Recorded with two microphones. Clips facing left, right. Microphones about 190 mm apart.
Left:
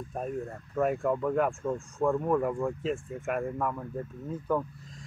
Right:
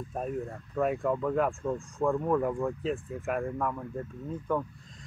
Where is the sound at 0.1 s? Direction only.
Centre (ahead or behind).